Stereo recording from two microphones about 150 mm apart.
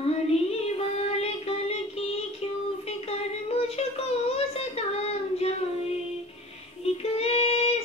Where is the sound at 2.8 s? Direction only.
45° left (ahead or behind).